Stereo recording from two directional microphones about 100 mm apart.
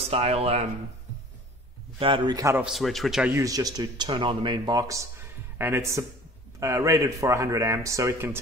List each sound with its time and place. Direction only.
0.1 s speech: 90° right
2.0 s a man's voice: 60° right (ahead or behind)
2.2 s speech: 40° right (ahead or behind)
2.7 s a man's voice: centre (ahead or behind)
3.3 s speech: 30° right (ahead or behind)